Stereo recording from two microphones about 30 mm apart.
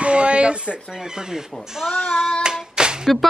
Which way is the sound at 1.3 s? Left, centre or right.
Centre.